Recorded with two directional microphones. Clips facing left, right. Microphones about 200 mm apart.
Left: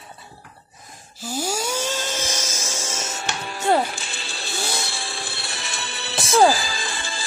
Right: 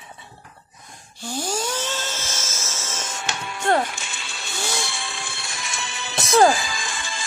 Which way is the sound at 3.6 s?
10° left (ahead or behind).